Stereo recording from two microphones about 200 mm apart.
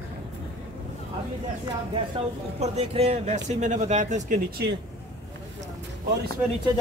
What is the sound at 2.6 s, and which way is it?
Speech, 30° right (ahead or behind).